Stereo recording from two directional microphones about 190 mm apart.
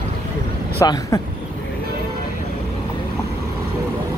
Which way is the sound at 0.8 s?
15° left (ahead or behind).